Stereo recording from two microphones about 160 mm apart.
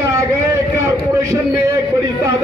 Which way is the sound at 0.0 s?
15° right (ahead or behind).